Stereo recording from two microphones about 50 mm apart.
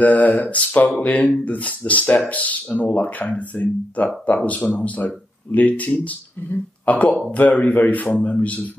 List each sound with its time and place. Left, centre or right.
0.0 s speech: left